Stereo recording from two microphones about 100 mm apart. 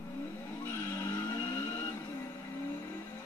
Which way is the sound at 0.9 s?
25° left (ahead or behind).